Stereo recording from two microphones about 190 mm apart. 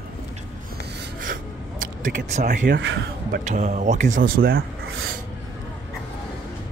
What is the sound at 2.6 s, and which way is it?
Speech, 75° right (ahead or behind).